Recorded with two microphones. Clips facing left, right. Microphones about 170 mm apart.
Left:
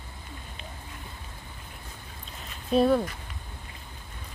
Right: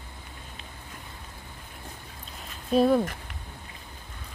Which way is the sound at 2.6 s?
5° right (ahead or behind).